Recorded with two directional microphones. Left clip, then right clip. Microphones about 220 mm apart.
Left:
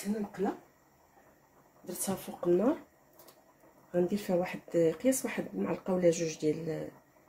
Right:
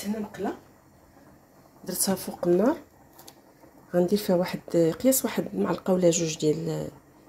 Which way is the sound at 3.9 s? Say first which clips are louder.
Right 7 dB; 30° right (ahead or behind).